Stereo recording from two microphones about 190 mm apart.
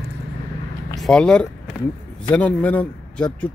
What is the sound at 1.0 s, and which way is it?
Speech, 5° left (ahead or behind).